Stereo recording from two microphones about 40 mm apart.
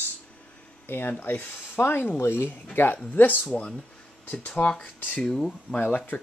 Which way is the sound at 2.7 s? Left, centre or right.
Left.